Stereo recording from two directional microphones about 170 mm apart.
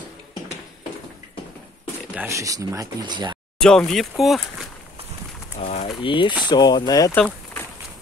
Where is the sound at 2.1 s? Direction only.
15° right (ahead or behind).